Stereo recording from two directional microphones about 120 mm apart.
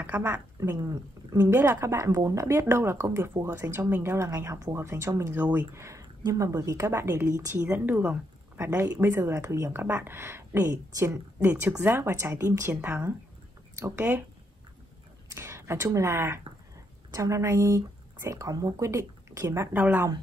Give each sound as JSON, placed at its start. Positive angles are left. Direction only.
{"t": 0.0, "sound": "speech", "side_deg": -20}
{"t": 15.2, "sound": "speech", "side_deg": -20}